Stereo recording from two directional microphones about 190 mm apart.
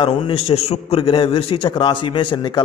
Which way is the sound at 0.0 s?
30° left (ahead or behind).